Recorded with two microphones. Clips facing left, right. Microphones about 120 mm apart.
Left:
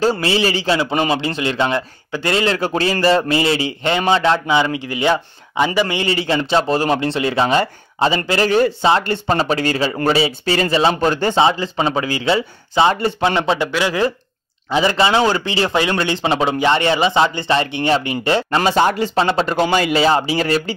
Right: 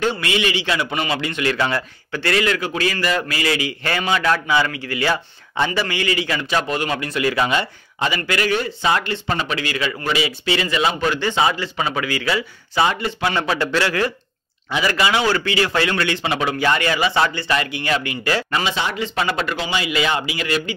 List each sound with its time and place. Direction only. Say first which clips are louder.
0.0 s a man's voice: left 4 dB; 35° left (ahead or behind)
11.3 s a man's voice: left 4 dB; 30° left (ahead or behind)
13.2 s a man's voice: left 2 dB; 20° left (ahead or behind)
18.6 s speech: left 8 dB; 45° left (ahead or behind)
19.1 s speech: left 5 dB; 30° left (ahead or behind)
19.5 s speech: left 8 dB; 50° left (ahead or behind)
19.9 s speech: left 6 dB; 35° left (ahead or behind)